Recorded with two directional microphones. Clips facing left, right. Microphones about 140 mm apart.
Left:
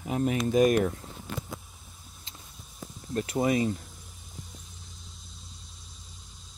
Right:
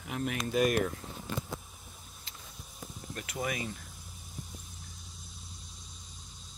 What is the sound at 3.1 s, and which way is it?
Speech, 30° left (ahead or behind).